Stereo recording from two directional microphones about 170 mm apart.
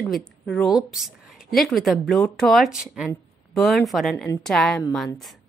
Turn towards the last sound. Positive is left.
turn(degrees=10)  # may be behind; listen again after turning